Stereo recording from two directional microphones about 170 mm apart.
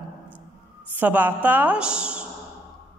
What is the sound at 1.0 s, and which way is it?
A woman's voice, 10° right (ahead or behind).